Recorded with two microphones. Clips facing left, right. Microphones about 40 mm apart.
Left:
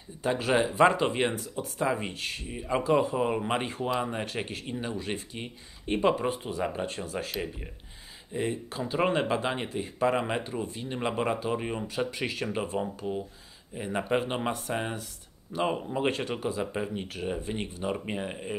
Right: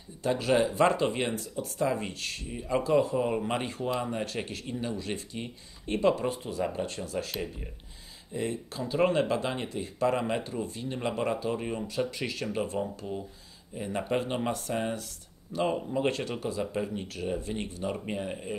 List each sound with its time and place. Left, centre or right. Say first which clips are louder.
0.2 s speech: even; centre